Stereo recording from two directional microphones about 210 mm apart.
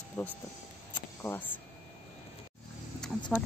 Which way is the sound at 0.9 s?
10° left (ahead or behind).